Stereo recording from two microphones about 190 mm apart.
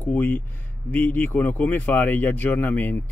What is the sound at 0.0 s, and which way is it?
Speech, 10° left (ahead or behind).